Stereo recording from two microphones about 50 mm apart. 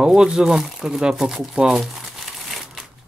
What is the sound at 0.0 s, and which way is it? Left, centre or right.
Speech, centre.